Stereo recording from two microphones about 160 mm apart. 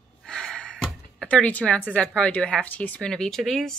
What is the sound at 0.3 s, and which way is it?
Speech, 5° left (ahead or behind).